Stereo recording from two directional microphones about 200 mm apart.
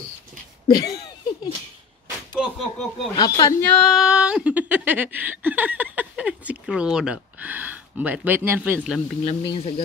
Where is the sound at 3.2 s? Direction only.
20° left (ahead or behind).